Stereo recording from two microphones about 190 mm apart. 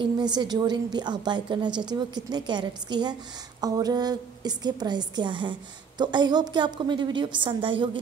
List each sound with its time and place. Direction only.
0.0 s a woman's voice: 20° right (ahead or behind)